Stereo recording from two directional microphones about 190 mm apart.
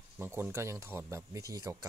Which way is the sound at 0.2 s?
10° right (ahead or behind).